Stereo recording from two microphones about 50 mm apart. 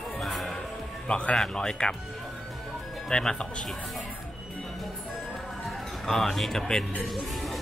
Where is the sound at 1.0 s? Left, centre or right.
Left.